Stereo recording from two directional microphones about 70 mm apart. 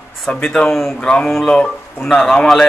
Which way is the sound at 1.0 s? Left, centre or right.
Centre.